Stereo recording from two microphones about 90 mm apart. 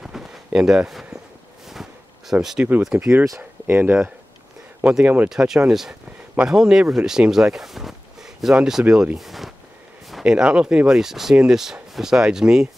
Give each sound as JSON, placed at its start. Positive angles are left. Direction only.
{"t": 0.0, "sound": "a sound", "side_deg": -5}
{"t": 2.8, "sound": "speech", "side_deg": -10}
{"t": 3.3, "sound": "speech", "side_deg": -25}
{"t": 5.3, "sound": "speech", "side_deg": -5}